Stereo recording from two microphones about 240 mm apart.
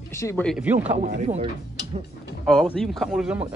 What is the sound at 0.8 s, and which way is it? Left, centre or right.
Speech, right.